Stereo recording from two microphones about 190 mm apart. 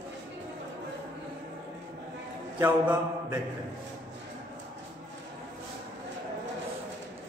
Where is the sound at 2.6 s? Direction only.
5° right (ahead or behind).